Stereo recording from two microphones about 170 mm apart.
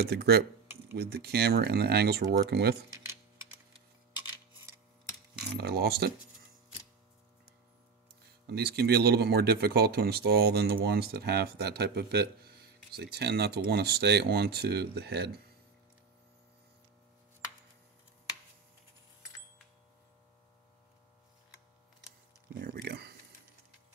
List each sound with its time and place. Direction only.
0.0 s speech: 70° right (ahead or behind)
5.6 s speech: 70° right (ahead or behind)
8.2 s speech: 70° right (ahead or behind)
22.5 s a sound: 60° right (ahead or behind)